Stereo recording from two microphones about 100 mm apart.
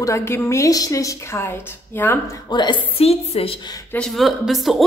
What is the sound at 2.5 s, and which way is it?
Speech, 50° left (ahead or behind).